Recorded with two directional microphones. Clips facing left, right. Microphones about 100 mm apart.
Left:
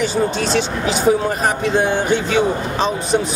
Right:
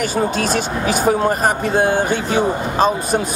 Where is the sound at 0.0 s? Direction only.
50° right (ahead or behind).